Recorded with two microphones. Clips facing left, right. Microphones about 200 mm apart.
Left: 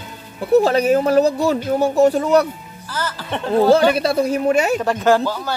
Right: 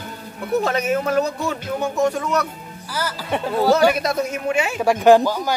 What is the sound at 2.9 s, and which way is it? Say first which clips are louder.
Speech: right 1 dB; 10° right (ahead or behind).